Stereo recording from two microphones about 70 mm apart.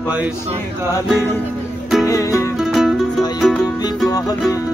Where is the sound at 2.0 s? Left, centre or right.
Left.